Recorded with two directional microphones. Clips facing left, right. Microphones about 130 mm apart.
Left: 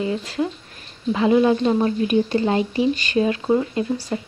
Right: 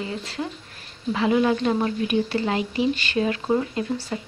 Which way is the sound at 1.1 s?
20° left (ahead or behind).